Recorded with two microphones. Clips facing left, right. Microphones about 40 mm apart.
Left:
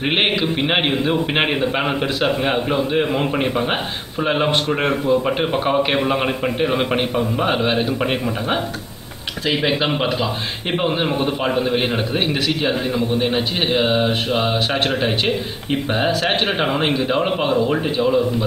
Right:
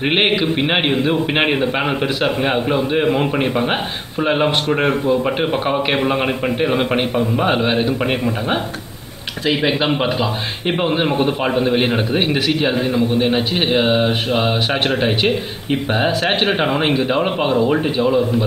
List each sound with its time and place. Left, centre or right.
0.0 s a man's voice: centre
16.1 s a man's voice: centre
16.5 s a man's voice: centre